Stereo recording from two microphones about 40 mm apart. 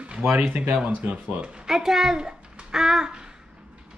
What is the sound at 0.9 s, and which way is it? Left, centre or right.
Speech, right.